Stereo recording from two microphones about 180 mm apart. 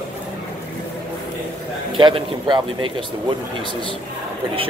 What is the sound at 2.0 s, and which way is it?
Speech, 25° right (ahead or behind).